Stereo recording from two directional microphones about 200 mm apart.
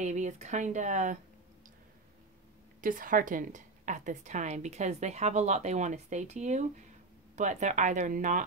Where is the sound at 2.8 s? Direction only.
45° right (ahead or behind).